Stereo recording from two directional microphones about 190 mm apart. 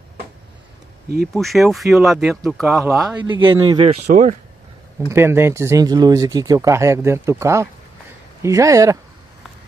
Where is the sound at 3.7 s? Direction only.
35° right (ahead or behind).